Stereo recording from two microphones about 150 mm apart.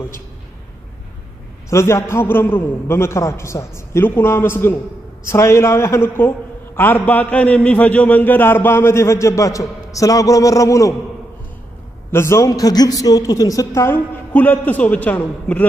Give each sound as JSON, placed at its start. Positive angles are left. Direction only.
{"t": 1.7, "sound": "a man's voice", "side_deg": 20}
{"t": 12.1, "sound": "a man's voice", "side_deg": 15}
{"t": 13.7, "sound": "a man's voice", "side_deg": 15}